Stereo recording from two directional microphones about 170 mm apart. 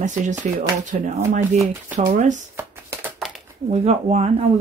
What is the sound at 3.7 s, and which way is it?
Speech, 40° right (ahead or behind).